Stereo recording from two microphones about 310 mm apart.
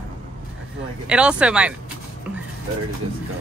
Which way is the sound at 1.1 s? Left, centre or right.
Centre.